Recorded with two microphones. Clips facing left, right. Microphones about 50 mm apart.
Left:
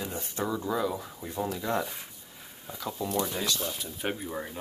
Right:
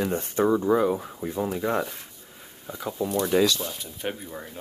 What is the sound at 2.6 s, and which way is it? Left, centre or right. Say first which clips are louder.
Speech: right 5 dB; centre.